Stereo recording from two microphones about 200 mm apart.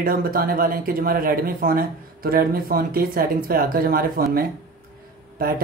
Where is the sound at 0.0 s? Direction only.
45° right (ahead or behind).